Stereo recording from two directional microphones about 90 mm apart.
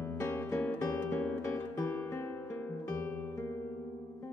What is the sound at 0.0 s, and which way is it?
Guitar, 30° left (ahead or behind).